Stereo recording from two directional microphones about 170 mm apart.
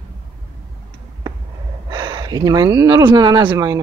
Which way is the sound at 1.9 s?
25° right (ahead or behind).